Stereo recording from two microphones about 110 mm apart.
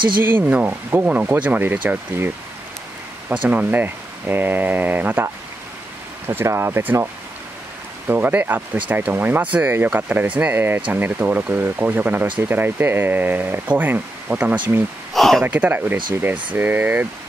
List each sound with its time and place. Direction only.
0.2 s speech: 20° right (ahead or behind)
3.4 s speech: 15° right (ahead or behind)
8.1 s speech: 15° right (ahead or behind)
15.1 s speech: centre (ahead or behind)
15.4 s speech: 15° right (ahead or behind)